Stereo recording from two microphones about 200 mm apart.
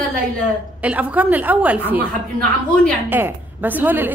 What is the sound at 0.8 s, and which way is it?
A woman's voice, 5° right (ahead or behind).